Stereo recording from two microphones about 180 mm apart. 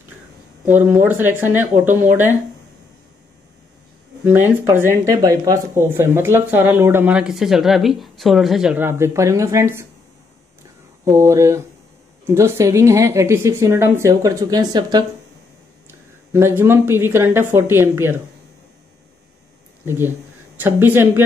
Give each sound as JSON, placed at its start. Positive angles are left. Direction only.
{"t": 0.7, "sound": "speech", "side_deg": -10}
{"t": 4.2, "sound": "speech", "side_deg": -10}
{"t": 11.1, "sound": "speech", "side_deg": -15}
{"t": 19.8, "sound": "speech", "side_deg": -10}